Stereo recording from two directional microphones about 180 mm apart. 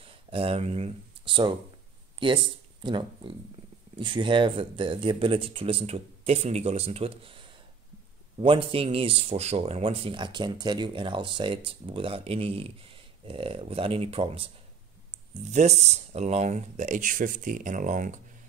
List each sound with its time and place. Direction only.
0.0 s speech: 30° right (ahead or behind)
15.5 s speech: 40° right (ahead or behind)